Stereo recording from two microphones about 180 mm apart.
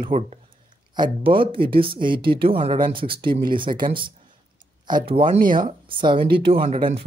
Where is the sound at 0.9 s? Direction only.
25° right (ahead or behind).